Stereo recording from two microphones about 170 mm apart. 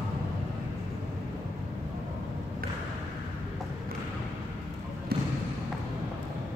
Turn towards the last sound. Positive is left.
turn(degrees=-65)  # may be behind; listen again after turning